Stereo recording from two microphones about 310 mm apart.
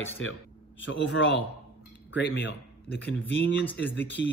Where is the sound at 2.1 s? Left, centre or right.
Left.